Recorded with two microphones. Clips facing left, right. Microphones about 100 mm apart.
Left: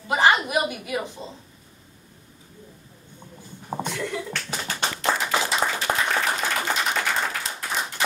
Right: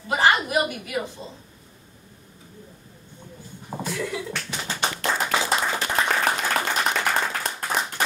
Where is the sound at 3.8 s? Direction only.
5° right (ahead or behind).